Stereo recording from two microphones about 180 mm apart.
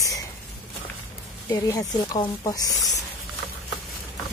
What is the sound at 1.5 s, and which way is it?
Speech, 20° left (ahead or behind).